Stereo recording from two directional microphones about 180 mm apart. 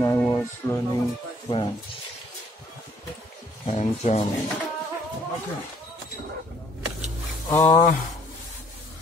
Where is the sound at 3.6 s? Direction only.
35° left (ahead or behind).